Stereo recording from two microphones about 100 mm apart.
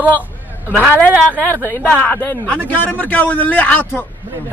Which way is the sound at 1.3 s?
20° left (ahead or behind).